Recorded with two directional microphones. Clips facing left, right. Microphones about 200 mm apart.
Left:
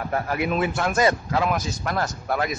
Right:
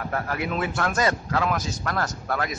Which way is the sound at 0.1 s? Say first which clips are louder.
Left 4 dB; 15° left (ahead or behind).